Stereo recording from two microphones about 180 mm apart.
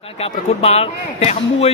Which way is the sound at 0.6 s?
35° left (ahead or behind).